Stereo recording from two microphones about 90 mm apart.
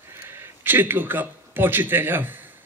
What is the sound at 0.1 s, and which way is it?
A man's voice, 25° right (ahead or behind).